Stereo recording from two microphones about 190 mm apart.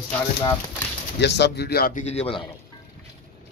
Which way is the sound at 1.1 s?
65° left (ahead or behind).